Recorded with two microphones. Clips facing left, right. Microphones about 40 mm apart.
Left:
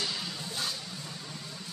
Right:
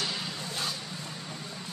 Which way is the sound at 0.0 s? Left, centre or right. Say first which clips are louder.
Right 1 dB; right.